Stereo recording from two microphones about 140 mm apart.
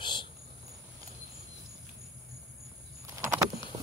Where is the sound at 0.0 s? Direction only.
35° left (ahead or behind).